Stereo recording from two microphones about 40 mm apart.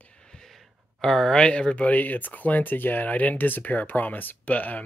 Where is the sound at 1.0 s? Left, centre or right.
Centre.